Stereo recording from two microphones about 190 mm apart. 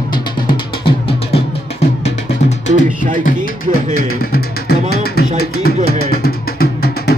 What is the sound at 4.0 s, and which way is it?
Music, 50° left (ahead or behind).